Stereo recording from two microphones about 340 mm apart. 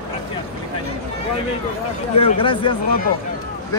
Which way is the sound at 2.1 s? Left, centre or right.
Centre.